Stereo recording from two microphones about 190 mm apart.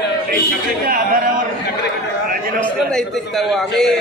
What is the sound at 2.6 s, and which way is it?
A man's voice, centre (ahead or behind).